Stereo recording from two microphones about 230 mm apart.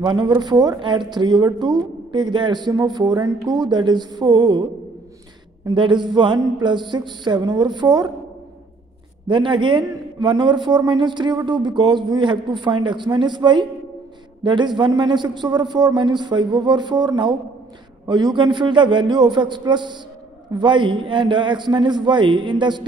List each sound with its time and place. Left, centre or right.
0.0 s speech: centre
5.7 s speech: centre
9.3 s speech: right